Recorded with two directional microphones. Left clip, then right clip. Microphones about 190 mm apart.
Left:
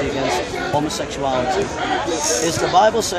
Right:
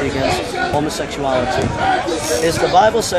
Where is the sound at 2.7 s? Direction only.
5° left (ahead or behind).